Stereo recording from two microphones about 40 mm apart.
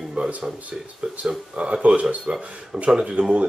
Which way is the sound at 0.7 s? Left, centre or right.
Centre.